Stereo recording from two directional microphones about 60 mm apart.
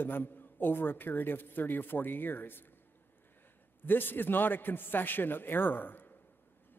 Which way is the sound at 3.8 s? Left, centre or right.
Left.